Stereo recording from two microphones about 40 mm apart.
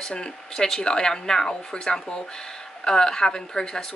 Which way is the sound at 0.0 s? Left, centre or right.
Left.